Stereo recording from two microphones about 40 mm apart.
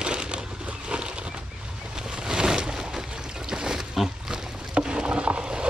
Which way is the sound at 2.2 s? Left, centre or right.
Centre.